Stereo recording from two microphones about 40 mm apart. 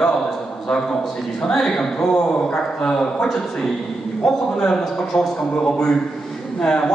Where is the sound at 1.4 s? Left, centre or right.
Centre.